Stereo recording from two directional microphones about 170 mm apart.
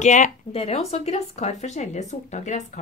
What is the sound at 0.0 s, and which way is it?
A woman's voice, 45° left (ahead or behind).